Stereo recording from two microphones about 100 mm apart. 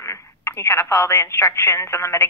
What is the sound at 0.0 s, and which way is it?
Speech, 25° left (ahead or behind).